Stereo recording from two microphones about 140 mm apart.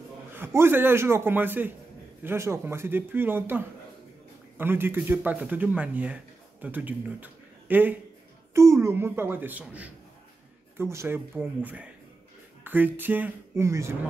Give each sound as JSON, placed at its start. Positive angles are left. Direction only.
{"t": 0.3, "sound": "a man's voice", "side_deg": -15}